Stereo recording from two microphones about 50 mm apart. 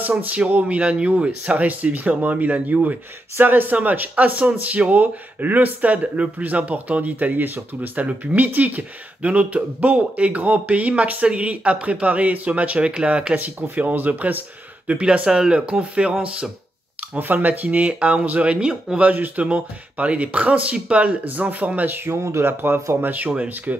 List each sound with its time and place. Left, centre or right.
0.5 s speech: right
17.2 s speech: right; by 18.9 s centre
18.9 s speech: right
21.9 s speech: right
22.5 s speech: right